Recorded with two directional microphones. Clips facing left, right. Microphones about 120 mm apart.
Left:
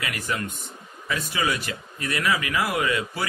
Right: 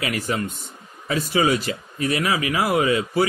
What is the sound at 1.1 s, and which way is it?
Speech, 30° right (ahead or behind).